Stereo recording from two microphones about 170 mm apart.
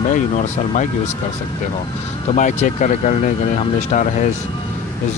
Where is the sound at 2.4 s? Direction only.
45° left (ahead or behind).